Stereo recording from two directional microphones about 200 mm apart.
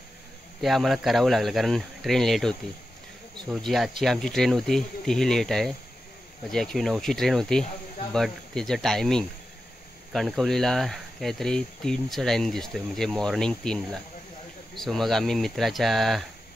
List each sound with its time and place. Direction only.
0.6 s speech: centre (ahead or behind)